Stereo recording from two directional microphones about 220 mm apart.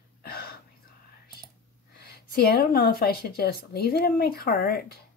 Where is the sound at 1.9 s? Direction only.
45° left (ahead or behind).